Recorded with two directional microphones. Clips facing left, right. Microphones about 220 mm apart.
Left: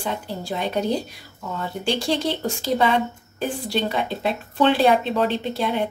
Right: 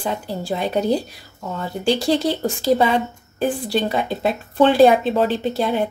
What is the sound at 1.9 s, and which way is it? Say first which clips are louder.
A woman's voice: right 5 dB; 40° right (ahead or behind).